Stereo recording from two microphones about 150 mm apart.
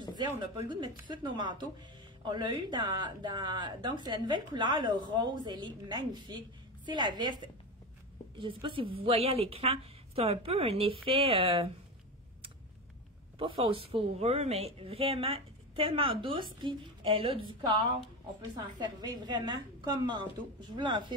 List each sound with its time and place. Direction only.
0.4 s speech: 30° right (ahead or behind)
13.4 s speech: 40° right (ahead or behind)
18.5 s speech: 25° right (ahead or behind)